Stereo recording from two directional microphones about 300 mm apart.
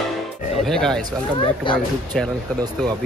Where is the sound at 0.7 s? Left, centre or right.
Centre.